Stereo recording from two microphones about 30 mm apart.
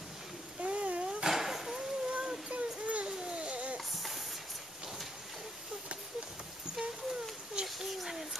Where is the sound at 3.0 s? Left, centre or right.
Right.